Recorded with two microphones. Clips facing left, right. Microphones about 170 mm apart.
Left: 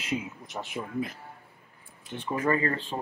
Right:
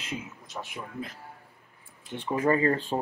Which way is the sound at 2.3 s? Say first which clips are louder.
Right 3 dB; 25° right (ahead or behind).